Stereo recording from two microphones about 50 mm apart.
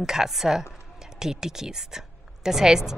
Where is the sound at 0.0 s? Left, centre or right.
Centre.